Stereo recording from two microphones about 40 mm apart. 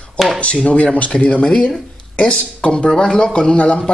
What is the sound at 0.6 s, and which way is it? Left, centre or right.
A man's voice, left.